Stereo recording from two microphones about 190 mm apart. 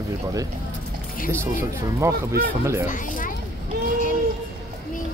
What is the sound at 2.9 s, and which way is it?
Speech, 45° left (ahead or behind).